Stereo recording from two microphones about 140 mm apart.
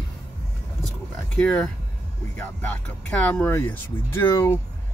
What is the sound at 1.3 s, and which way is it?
Speech, 5° left (ahead or behind).